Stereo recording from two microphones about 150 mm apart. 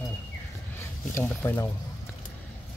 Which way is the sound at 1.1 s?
15° left (ahead or behind).